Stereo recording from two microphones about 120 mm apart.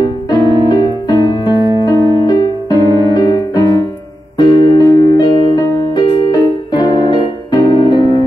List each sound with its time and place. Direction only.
0.0 s piano: 35° left (ahead or behind)
4.4 s music: 35° left (ahead or behind)
6.3 s keyboard: 35° left (ahead or behind)